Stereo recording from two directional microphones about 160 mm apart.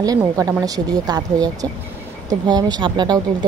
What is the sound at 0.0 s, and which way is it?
Speech, 25° right (ahead or behind).